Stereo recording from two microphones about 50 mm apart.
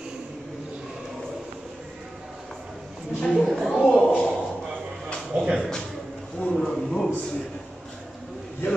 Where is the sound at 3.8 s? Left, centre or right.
Centre.